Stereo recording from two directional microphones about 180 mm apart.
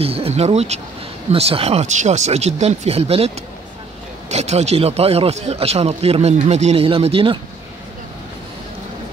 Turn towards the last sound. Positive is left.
turn(degrees=-30)  # may be behind; listen again after turning